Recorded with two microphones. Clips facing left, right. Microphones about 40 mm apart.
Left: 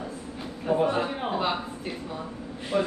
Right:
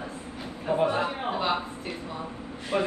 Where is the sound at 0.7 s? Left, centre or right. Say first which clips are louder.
Left 1 dB; right.